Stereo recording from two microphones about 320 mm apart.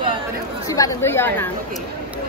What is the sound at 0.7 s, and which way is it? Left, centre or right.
Speech, centre.